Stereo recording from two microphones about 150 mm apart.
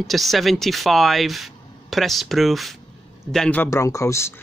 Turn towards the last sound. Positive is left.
turn(degrees=20)  # may be behind; listen again after turning